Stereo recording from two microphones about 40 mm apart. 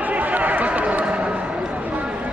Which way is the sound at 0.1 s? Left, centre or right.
Right.